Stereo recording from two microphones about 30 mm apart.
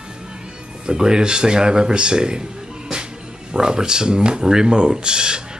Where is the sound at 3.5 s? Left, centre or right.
Right.